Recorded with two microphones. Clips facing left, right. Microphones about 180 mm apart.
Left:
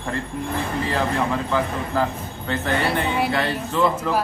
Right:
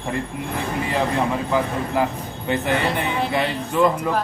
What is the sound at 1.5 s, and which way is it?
Speech, 15° right (ahead or behind).